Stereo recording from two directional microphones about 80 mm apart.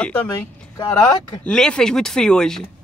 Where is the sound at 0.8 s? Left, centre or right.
Left.